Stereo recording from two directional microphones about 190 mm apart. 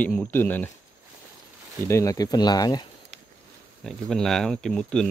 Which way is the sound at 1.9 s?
15° left (ahead or behind).